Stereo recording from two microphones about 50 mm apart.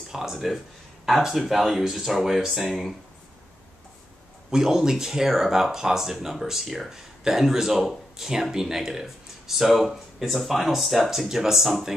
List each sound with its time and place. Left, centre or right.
0.1 s speech: centre
4.5 s speech: centre